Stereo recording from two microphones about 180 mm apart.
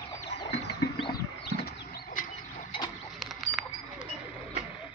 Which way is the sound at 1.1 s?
60° left (ahead or behind).